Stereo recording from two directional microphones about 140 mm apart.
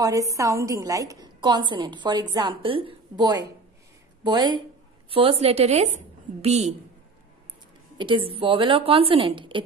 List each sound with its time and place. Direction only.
0.0 s a woman's voice: 25° right (ahead or behind); by 6.7 s 50° right (ahead or behind)
8.0 s a woman's voice: 40° right (ahead or behind)